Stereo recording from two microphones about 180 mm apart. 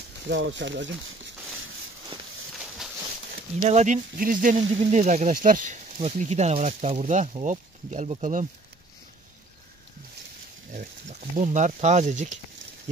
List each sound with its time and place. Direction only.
0.3 s speech: 85° right
2.1 s walk: 30° right (ahead or behind)
3.6 s speech: 40° right (ahead or behind)
10.7 s speech: 45° right (ahead or behind)